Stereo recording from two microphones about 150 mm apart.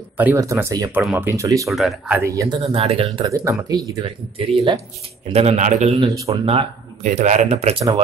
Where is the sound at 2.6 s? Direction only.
45° right (ahead or behind).